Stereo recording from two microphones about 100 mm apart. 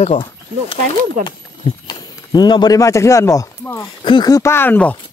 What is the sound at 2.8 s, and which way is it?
Speech, 30° left (ahead or behind).